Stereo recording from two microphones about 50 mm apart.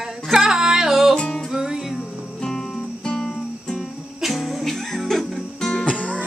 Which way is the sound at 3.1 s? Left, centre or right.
Centre.